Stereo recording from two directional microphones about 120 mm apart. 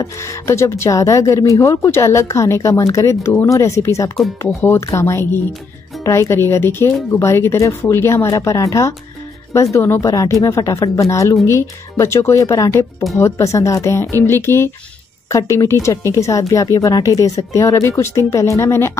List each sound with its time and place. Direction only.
0.0 s speech: 25° left (ahead or behind)